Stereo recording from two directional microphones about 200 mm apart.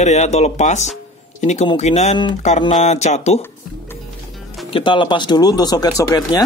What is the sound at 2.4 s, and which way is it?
Speech, 40° left (ahead or behind).